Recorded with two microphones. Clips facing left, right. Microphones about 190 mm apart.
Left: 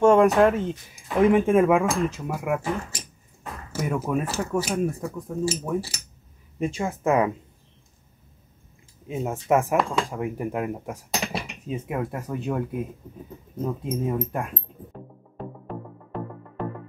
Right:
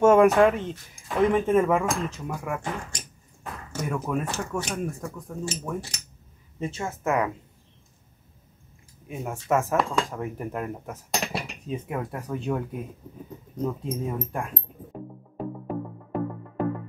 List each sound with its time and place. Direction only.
0.0 s speech: 5° right (ahead or behind); by 7.2 s 15° left (ahead or behind)
9.0 s speech: 20° left (ahead or behind)
9.8 s speech: 5° left (ahead or behind)
13.6 s speech: 5° left (ahead or behind)
14.9 s music: 10° right (ahead or behind)